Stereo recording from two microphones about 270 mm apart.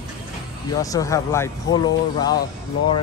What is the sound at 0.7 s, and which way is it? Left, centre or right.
Speech, centre.